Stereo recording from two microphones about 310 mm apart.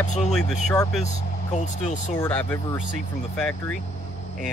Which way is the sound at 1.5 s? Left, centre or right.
Left.